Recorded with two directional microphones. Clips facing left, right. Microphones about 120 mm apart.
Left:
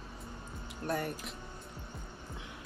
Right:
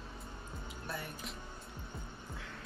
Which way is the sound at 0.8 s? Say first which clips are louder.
Left 10 dB; 55° left (ahead or behind).